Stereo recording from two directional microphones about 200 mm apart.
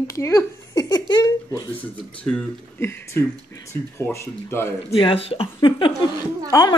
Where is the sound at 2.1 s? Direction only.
5° left (ahead or behind).